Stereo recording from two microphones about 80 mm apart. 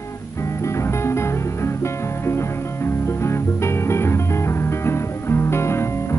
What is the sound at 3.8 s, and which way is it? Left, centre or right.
Music, left.